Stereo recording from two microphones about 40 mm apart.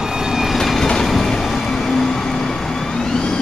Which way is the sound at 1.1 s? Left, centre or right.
Centre.